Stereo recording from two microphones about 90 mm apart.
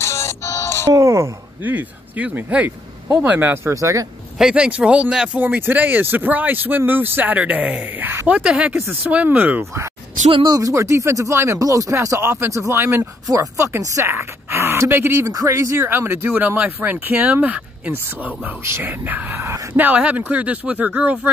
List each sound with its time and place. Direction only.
0.0 s music: 30° left (ahead or behind)
0.8 s speech: 35° right (ahead or behind)
1.6 s speech: 20° right (ahead or behind)
3.6 s speech: 35° right (ahead or behind)
4.4 s speech: 10° right (ahead or behind)
10.5 s speech: 35° right (ahead or behind)
13.3 s speech: 40° right (ahead or behind); by 21.3 s 15° right (ahead or behind)